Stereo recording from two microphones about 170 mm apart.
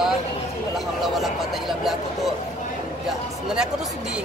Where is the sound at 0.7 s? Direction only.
Centre (ahead or behind).